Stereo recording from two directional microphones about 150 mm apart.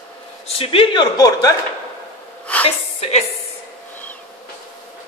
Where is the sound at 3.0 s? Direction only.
45° left (ahead or behind).